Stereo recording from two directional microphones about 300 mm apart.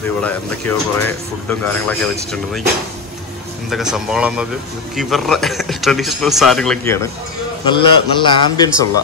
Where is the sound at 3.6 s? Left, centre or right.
Centre.